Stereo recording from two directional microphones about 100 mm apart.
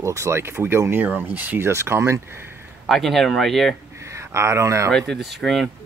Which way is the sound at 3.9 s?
30° right (ahead or behind).